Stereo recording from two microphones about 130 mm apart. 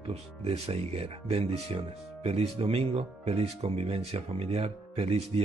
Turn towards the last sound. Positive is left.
turn(degrees=-50)  # may be behind; listen again after turning